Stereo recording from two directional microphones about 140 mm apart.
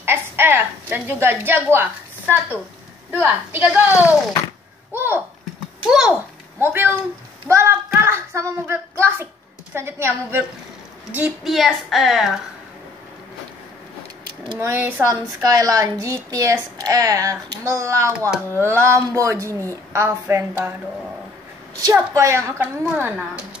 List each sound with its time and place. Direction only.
0.0 s a sound: 15° right (ahead or behind)
1.2 s a woman's voice: 15° right (ahead or behind)
3.2 s a woman's voice: 10° right (ahead or behind)
6.6 s a woman's voice: 15° right (ahead or behind)
14.6 s a child's voice: 15° right (ahead or behind)
21.9 s a child's voice: 20° right (ahead or behind)